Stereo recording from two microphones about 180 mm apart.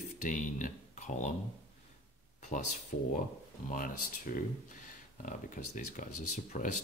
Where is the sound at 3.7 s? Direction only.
50° left (ahead or behind).